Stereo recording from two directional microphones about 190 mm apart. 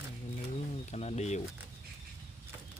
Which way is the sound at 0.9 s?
35° left (ahead or behind).